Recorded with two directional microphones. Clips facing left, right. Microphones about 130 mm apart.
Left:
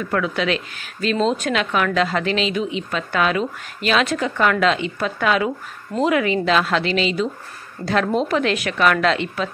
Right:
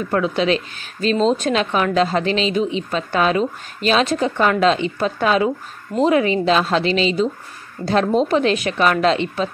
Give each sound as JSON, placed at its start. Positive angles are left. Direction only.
{"t": 0.1, "sound": "a woman's voice", "side_deg": -30}